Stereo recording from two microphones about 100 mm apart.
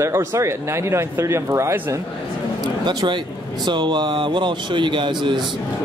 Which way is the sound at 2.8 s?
50° right (ahead or behind).